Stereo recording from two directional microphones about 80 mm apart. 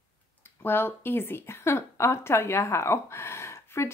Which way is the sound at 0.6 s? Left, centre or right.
Left.